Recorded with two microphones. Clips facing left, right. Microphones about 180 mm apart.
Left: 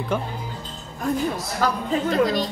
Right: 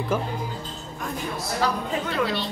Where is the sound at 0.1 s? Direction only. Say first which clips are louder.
Left 1 dB; 5° right (ahead or behind).